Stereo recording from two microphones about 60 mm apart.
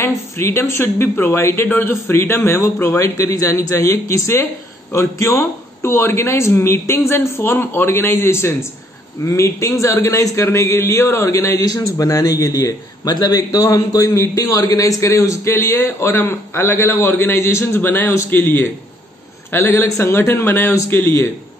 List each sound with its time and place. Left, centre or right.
0.0 s a man's voice: left
2.3 s a man's voice: left
14.2 s a man's voice: left
19.8 s speech: left